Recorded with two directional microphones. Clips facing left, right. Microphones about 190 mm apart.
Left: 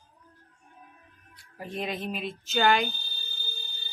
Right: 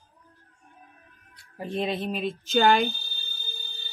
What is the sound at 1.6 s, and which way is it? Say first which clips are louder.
Speech: right 5 dB; 30° right (ahead or behind).